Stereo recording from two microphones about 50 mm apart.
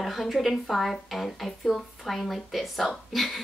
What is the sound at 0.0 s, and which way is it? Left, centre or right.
Speech, centre.